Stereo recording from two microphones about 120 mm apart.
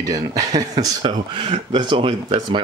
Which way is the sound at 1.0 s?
45° right (ahead or behind).